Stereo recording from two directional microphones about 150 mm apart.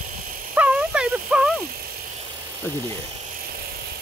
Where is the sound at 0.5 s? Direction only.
10° right (ahead or behind).